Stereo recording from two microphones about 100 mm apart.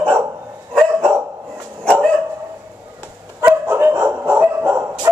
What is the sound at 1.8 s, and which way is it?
Dog, 10° left (ahead or behind).